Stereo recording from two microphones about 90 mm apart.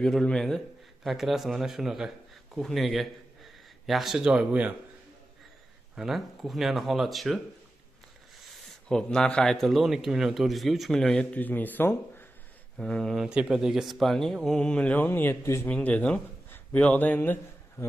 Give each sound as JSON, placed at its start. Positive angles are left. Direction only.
{"t": 0.0, "sound": "a man's voice", "side_deg": 5}
{"t": 5.9, "sound": "a man's voice", "side_deg": -5}
{"t": 8.8, "sound": "a man's voice", "side_deg": 5}
{"t": 12.7, "sound": "speech", "side_deg": 5}
{"t": 13.2, "sound": "a man's voice", "side_deg": -10}
{"t": 15.7, "sound": "speech", "side_deg": 15}
{"t": 16.4, "sound": "a sound", "side_deg": 15}